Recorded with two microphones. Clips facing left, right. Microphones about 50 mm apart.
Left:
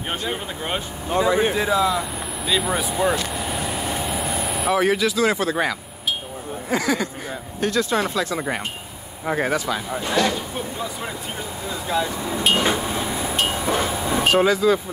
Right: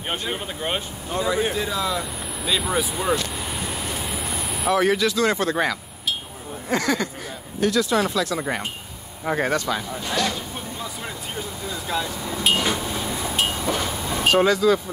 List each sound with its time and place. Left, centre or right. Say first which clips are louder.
1.1 s speech: left 4 dB; left
1.7 s speech: left 5 dB; centre
7.6 s speech: right 1 dB; left
8.4 s speech: left 1 dB; centre
9.8 s speech: left 4 dB; left
11.9 s speech: left 4 dB; centre
12.5 s a sound: left 3 dB; left
13.8 s train: left 4 dB; centre
14.2 s speech: even; centre